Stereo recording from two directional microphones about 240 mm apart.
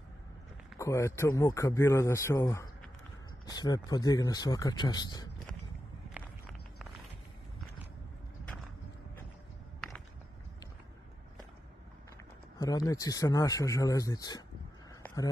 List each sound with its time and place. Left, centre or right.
0.7 s a man's voice: centre
6.1 s walk: centre
9.8 s walk: centre
12.5 s a man's voice: centre
15.0 s a sound: centre